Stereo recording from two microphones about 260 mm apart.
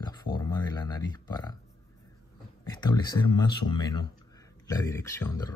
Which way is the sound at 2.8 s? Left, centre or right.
Centre.